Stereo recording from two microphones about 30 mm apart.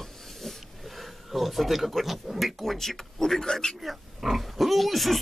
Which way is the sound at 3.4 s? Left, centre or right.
Left.